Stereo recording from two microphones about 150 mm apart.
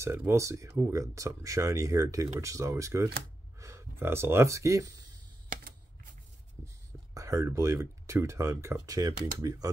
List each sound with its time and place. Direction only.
0.0 s speech: 15° right (ahead or behind)
5.5 s typing: 65° right (ahead or behind)
7.2 s speech: 20° right (ahead or behind)